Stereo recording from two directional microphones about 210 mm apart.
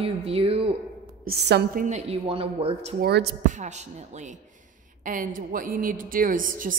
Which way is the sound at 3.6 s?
35° right (ahead or behind).